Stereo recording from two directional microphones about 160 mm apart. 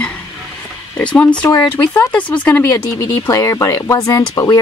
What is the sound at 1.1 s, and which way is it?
Speech, 5° left (ahead or behind).